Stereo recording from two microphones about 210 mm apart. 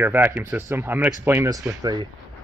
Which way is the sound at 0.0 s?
10° right (ahead or behind).